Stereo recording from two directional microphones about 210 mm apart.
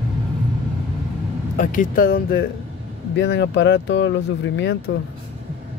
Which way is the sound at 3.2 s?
60° left (ahead or behind).